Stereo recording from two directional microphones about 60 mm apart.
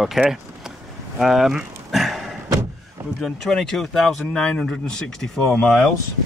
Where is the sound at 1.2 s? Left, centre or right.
Centre.